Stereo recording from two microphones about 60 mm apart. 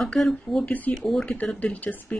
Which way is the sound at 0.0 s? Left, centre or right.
Centre.